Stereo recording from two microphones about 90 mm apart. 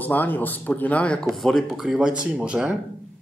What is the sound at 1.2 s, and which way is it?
Speech, centre (ahead or behind).